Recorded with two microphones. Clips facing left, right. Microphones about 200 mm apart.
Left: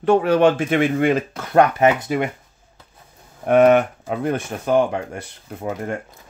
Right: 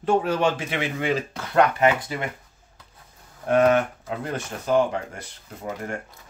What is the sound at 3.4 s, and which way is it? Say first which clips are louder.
Speech: left 5 dB; 65° left (ahead or behind).